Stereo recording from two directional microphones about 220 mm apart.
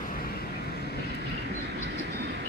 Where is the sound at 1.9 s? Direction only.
50° right (ahead or behind).